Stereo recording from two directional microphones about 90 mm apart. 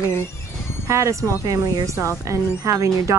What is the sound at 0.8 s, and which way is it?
Speech, 35° right (ahead or behind).